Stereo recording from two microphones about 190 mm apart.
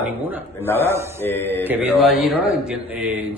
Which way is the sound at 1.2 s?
10° left (ahead or behind).